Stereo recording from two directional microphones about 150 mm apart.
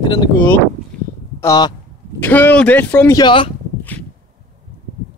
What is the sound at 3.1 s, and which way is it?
Speech, 35° left (ahead or behind).